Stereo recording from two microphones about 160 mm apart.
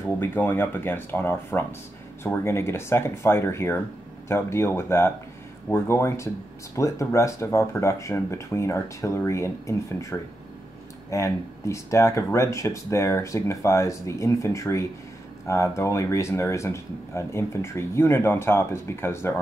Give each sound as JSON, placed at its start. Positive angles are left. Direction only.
{"t": 0.0, "sound": "speech", "side_deg": 10}